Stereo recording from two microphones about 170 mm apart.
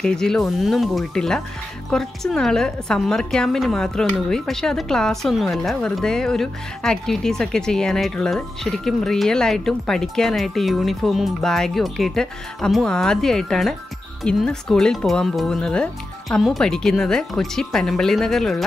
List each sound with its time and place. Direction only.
0.0 s a woman's voice: 5° left (ahead or behind)